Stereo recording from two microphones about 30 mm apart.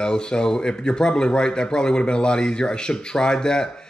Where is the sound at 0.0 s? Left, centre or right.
Left.